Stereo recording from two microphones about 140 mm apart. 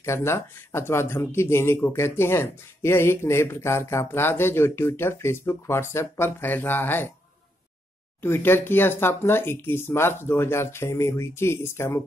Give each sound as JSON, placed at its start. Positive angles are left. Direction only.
{"t": 0.0, "sound": "speech", "side_deg": 20}
{"t": 8.2, "sound": "speech", "side_deg": 15}